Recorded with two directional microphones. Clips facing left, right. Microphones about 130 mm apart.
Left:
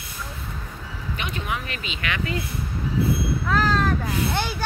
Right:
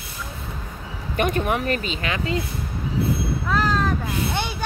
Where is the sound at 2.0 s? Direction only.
30° right (ahead or behind).